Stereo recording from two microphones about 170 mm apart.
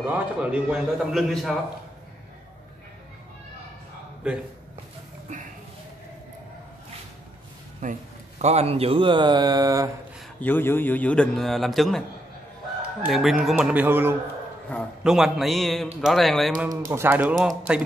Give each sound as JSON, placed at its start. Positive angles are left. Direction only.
{"t": 0.0, "sound": "a man's voice", "side_deg": -10}
{"t": 5.3, "sound": "a sound", "side_deg": -45}
{"t": 7.8, "sound": "speech", "side_deg": -45}
{"t": 10.4, "sound": "a man's voice", "side_deg": 10}
{"t": 13.0, "sound": "a man's voice", "side_deg": 0}
{"t": 16.9, "sound": "a man's voice", "side_deg": -10}